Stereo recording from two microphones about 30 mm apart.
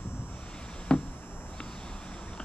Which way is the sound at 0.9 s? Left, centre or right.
Left.